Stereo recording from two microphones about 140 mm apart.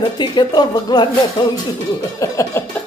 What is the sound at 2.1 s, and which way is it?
Speech, 20° left (ahead or behind).